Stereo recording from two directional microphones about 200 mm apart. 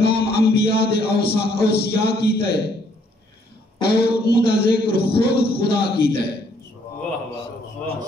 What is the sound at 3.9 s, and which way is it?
Speech, 55° left (ahead or behind).